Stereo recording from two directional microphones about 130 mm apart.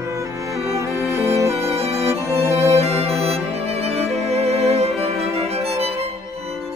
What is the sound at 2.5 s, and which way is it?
Music, 50° right (ahead or behind).